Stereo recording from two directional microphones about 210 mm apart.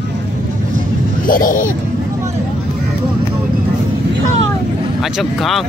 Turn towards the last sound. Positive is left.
turn(degrees=0)  # may be behind; listen again after turning